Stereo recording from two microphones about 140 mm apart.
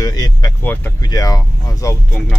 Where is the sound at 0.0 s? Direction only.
25° left (ahead or behind).